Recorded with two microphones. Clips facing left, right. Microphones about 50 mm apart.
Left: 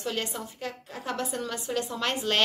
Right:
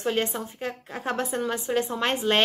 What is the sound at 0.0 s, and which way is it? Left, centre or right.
A woman's voice, right.